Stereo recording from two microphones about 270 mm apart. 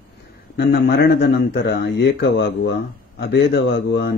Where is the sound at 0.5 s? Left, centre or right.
Left.